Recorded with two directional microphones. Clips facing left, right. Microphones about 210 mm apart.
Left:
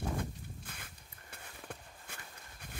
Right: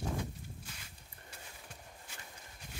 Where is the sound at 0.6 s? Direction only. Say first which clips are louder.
Left 2 dB; 55° left (ahead or behind).